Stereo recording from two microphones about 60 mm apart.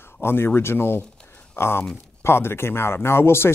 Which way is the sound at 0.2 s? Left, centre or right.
Left.